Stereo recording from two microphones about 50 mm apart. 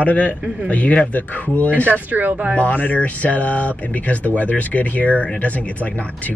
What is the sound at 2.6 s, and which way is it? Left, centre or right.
Speech, left.